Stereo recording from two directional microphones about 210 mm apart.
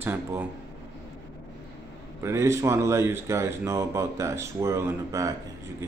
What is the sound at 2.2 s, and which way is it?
Speech, 15° right (ahead or behind).